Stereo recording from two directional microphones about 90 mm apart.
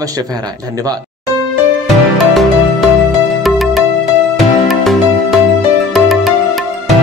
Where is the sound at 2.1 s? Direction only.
Centre (ahead or behind).